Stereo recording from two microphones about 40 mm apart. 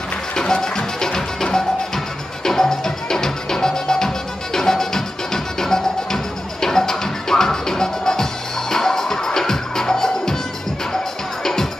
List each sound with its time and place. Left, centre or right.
0.4 s music: centre